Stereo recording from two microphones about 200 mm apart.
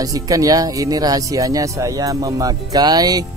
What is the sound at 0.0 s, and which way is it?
Speech, 15° right (ahead or behind).